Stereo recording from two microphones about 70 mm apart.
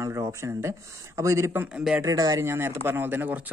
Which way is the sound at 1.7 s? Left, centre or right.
Centre.